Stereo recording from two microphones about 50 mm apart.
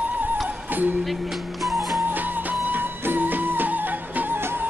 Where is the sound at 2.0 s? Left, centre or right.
Right.